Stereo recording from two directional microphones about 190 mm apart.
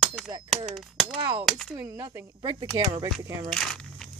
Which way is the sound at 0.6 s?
Centre (ahead or behind).